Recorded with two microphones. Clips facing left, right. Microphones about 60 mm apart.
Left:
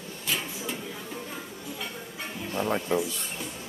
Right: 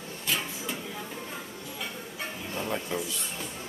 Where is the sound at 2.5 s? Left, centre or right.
Left.